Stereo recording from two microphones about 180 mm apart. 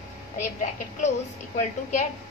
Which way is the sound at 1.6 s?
40° left (ahead or behind).